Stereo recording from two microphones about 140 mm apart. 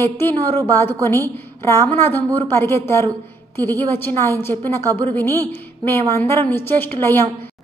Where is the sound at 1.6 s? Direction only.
15° left (ahead or behind).